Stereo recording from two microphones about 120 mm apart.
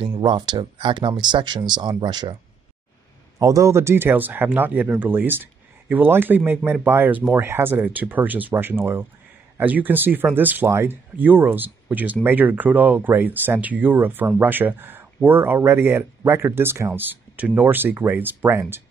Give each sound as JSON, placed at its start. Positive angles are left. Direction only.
{"t": 0.2, "sound": "speech", "side_deg": -40}
{"t": 3.3, "sound": "speech", "side_deg": -25}